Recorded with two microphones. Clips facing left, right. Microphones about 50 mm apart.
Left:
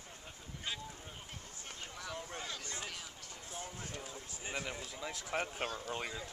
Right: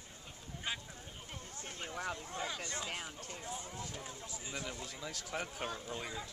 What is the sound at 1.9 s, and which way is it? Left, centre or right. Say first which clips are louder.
Speech: right 5 dB; right.